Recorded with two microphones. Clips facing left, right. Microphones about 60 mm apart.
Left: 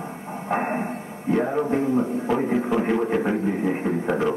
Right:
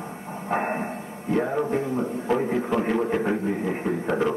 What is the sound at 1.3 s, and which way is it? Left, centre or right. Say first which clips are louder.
A man's voice: left 2 dB; centre.